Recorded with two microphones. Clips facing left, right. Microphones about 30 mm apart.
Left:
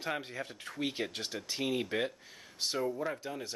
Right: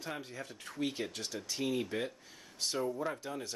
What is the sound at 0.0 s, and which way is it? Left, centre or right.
Speech, left.